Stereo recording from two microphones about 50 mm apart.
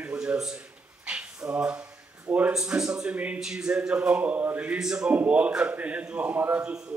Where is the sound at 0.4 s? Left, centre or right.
Centre.